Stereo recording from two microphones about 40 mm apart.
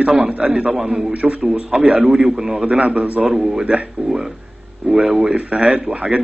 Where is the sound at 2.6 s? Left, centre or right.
Right.